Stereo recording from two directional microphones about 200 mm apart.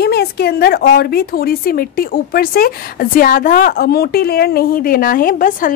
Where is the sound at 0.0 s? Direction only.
55° left (ahead or behind).